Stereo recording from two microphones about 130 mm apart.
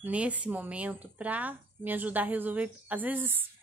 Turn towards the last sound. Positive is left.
turn(degrees=-15)  # may be behind; listen again after turning